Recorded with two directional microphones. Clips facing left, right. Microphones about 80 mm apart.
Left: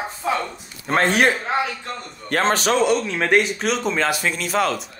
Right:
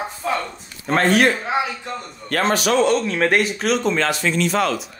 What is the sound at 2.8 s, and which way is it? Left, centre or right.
Speech, centre.